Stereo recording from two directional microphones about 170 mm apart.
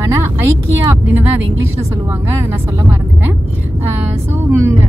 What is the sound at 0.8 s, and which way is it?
Speech, 15° right (ahead or behind).